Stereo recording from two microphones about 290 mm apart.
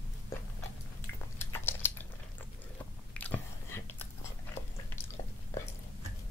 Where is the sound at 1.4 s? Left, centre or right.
Centre.